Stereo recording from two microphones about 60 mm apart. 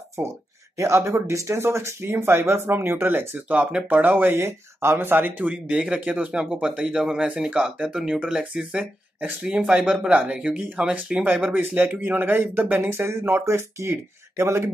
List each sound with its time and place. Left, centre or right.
0.2 s speech: right
0.7 s speech: right
3.3 s speech: right
5.5 s speech: centre
11.2 s speech: right